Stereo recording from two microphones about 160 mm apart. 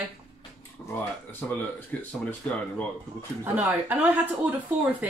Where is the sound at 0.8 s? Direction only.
5° left (ahead or behind).